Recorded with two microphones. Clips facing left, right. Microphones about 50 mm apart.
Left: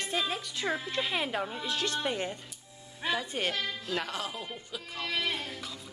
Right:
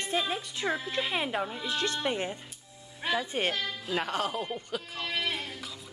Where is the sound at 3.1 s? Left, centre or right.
Right.